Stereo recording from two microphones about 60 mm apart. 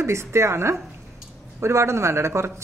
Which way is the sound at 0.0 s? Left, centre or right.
Right.